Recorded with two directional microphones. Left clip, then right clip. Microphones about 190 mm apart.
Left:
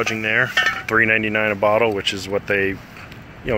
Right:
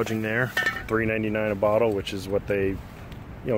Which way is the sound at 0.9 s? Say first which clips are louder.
Left 9 dB; centre (ahead or behind).